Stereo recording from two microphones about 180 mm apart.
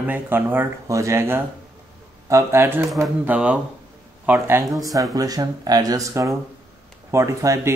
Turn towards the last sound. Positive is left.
turn(degrees=-15)  # may be behind; listen again after turning